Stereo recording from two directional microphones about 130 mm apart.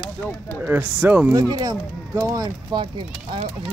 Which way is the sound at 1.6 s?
30° right (ahead or behind).